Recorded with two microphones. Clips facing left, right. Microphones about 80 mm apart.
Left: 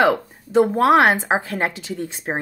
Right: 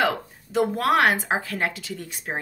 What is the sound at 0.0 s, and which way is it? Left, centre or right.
Speech, left.